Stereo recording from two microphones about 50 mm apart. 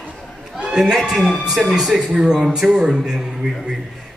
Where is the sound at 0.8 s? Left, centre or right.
Centre.